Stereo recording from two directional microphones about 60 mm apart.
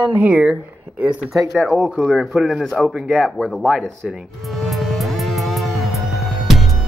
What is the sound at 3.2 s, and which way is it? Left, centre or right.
Speech, centre.